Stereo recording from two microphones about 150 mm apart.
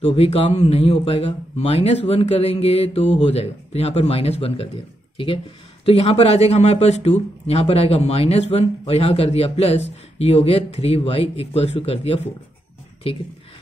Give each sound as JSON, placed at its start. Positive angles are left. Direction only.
{"t": 0.0, "sound": "a man's voice", "side_deg": 40}